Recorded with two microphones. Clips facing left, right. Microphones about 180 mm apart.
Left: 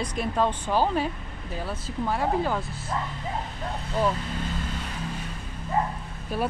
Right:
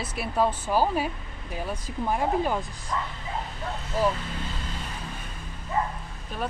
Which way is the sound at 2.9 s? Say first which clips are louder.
Even; 40° left (ahead or behind).